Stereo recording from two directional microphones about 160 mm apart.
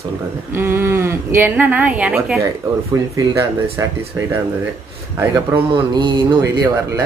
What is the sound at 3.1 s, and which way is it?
Speech, 20° right (ahead or behind).